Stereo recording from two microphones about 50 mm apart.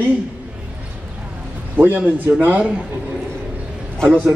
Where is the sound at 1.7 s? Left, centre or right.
Right.